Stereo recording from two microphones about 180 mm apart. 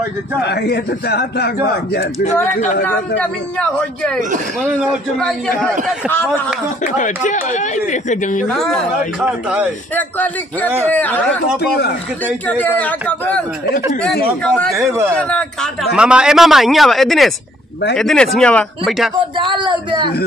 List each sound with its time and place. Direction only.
0.4 s a man's voice: 65° left (ahead or behind)
3.2 s a man's voice: 5° left (ahead or behind)
6.8 s speech: 45° left (ahead or behind)
8.5 s a man's voice: 5° left (ahead or behind)
9.9 s a man's voice: 10° left (ahead or behind)
12.3 s a man's voice: 10° left (ahead or behind)
14.4 s a man's voice: 5° left (ahead or behind)
19.1 s speech: 25° right (ahead or behind)